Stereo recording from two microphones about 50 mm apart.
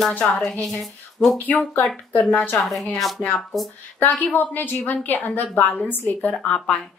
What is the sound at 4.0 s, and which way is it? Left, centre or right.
A woman's voice, left.